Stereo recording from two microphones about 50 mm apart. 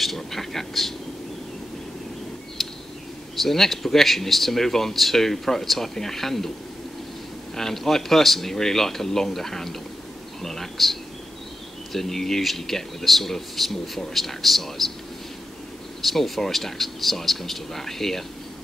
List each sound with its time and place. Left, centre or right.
0.0 s vehicle: centre
3.3 s speech: centre
7.5 s speech: centre
16.0 s speech: centre